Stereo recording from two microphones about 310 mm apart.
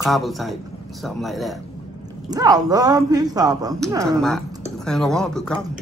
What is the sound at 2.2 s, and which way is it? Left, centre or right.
Speech, centre.